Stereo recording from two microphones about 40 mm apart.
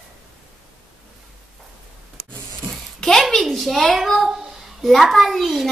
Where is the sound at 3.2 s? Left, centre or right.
Centre.